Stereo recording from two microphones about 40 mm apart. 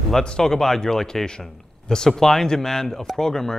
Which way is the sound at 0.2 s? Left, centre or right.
Left.